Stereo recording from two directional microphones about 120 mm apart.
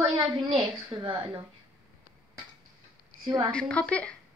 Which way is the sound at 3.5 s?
10° left (ahead or behind).